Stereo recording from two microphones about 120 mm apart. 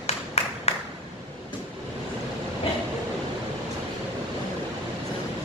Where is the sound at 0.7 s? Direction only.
60° left (ahead or behind).